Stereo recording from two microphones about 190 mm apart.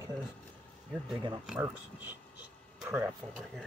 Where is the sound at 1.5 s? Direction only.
10° right (ahead or behind).